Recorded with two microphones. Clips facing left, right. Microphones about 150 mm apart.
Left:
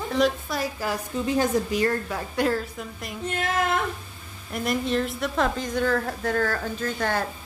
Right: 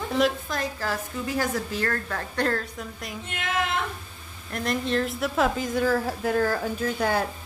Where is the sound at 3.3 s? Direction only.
40° left (ahead or behind).